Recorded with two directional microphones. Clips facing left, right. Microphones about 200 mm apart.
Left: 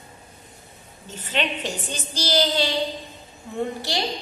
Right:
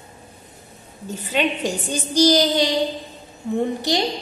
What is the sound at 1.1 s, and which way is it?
A woman's voice, 10° right (ahead or behind).